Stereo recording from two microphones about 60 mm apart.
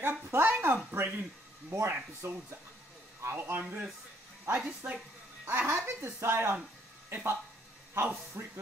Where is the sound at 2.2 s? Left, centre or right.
Right.